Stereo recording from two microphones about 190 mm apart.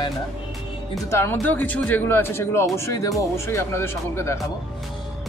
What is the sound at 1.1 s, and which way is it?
A man's voice, 15° left (ahead or behind).